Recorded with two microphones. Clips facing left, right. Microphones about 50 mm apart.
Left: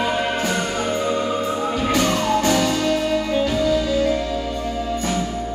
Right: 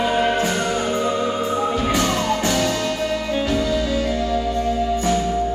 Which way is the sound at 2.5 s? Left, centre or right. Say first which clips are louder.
Left 1 dB; centre.